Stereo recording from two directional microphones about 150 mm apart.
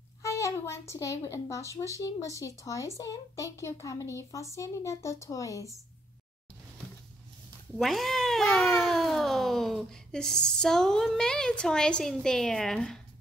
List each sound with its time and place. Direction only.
0.2 s speech: 20° left (ahead or behind)
7.7 s speech: centre (ahead or behind)